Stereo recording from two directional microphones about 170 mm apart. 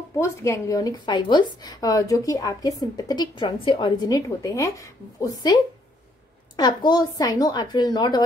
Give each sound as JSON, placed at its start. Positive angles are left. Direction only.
{"t": 0.2, "sound": "a woman's voice", "side_deg": 15}